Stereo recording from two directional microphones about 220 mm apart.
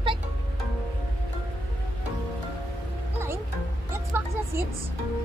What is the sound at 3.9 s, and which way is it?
Music, 10° right (ahead or behind).